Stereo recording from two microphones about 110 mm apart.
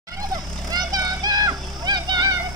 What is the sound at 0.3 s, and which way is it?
Vehicle, 35° right (ahead or behind).